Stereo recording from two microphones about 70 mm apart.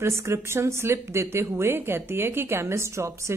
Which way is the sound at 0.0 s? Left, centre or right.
Right.